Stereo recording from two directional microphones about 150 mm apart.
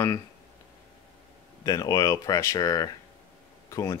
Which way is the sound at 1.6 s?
25° left (ahead or behind).